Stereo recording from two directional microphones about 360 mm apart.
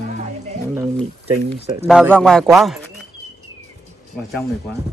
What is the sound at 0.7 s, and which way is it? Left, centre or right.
Speech, centre.